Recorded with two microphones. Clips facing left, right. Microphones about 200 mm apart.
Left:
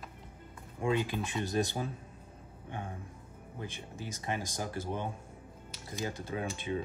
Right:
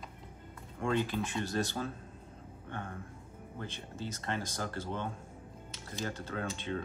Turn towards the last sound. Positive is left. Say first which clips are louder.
# left 2 dB
turn(degrees=10)  # may be behind; listen again after turning